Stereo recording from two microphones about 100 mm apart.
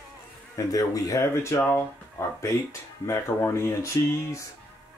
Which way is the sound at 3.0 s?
30° left (ahead or behind).